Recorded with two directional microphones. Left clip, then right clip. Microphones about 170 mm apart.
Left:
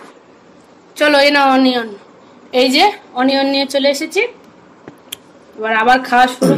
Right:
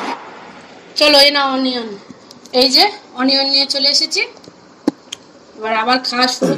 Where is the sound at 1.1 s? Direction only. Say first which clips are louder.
Left 3 dB; 15° left (ahead or behind).